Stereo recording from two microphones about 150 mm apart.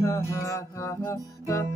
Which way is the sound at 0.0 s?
20° left (ahead or behind).